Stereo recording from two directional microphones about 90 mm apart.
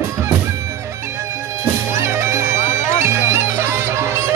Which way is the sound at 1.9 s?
30° right (ahead or behind).